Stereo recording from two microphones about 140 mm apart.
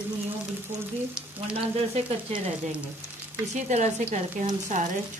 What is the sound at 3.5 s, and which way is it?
Speech, 55° right (ahead or behind).